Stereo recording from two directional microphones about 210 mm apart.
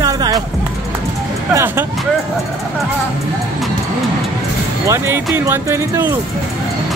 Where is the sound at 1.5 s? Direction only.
10° right (ahead or behind).